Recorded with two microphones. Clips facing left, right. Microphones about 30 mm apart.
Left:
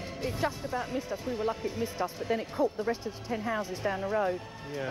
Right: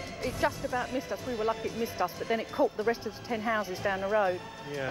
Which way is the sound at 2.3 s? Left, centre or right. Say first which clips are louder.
Even; centre.